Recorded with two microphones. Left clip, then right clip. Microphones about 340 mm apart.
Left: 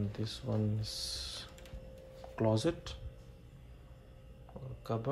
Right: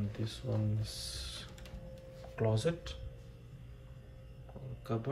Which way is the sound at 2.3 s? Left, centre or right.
Centre.